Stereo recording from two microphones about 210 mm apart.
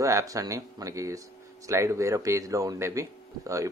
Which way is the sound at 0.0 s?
15° right (ahead or behind).